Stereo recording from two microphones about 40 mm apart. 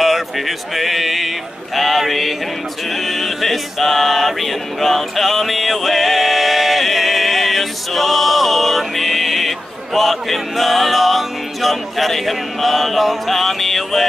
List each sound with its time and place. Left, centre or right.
0.0 s speech: centre
1.8 s mantra: centre
3.1 s choir: centre
9.9 s music: centre